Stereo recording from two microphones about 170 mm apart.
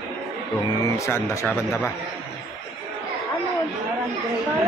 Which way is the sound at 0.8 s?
15° left (ahead or behind).